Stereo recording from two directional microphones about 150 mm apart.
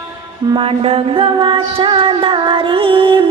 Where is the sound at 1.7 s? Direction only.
35° right (ahead or behind).